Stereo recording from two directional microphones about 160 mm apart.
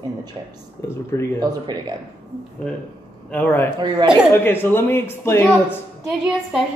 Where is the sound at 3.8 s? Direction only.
30° right (ahead or behind).